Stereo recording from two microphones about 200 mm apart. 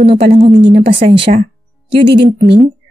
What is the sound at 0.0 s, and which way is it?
A woman's voice, 30° right (ahead or behind).